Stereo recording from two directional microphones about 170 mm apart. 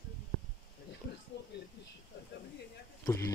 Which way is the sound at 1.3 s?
80° left.